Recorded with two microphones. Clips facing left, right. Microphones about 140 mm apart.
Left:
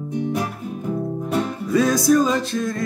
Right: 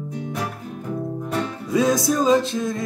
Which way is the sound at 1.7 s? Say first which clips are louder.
Left 3 dB; 20° right (ahead or behind).